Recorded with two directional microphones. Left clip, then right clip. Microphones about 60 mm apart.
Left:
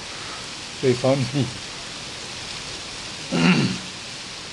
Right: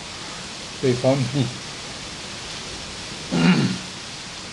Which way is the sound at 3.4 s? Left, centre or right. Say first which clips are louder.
Left 1 dB; centre.